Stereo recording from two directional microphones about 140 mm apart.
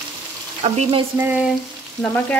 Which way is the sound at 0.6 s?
45° right (ahead or behind).